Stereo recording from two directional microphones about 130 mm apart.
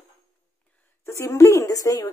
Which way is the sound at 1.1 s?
20° left (ahead or behind).